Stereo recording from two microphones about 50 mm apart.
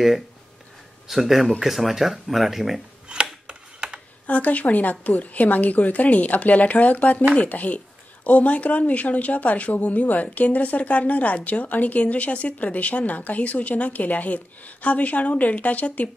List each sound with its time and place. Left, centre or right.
1.0 s speech: centre
3.1 s a sound: centre
3.4 s tick-tock: right
4.3 s a woman's voice: left